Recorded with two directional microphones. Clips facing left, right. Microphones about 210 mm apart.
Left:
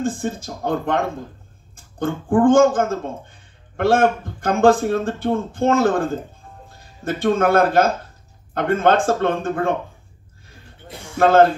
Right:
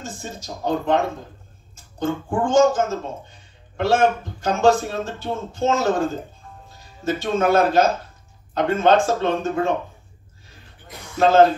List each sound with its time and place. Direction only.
0.0 s speech: 55° left (ahead or behind)
11.1 s speech: 55° left (ahead or behind)